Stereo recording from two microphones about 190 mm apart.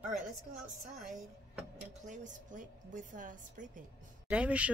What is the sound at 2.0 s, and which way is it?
A woman's voice, 40° right (ahead or behind).